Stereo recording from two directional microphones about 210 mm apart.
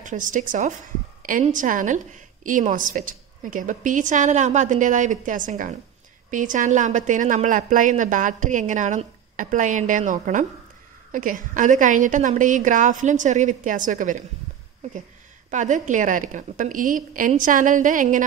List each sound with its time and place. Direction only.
0.0 s a woman's voice: 40° right (ahead or behind)
15.5 s a woman's voice: 35° right (ahead or behind)